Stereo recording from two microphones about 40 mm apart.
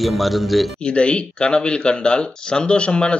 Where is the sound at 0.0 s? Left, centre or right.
Centre.